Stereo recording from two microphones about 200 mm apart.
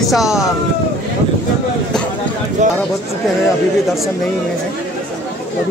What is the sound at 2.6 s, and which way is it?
Speech, 35° right (ahead or behind).